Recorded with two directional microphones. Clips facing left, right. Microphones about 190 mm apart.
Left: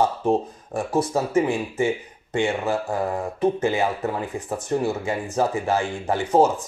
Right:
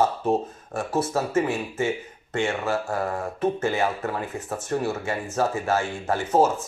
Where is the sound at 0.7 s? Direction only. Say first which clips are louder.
Left 2 dB; 15° left (ahead or behind).